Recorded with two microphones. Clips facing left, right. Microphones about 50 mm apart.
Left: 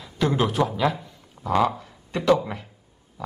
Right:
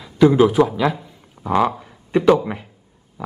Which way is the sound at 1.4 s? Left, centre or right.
Right.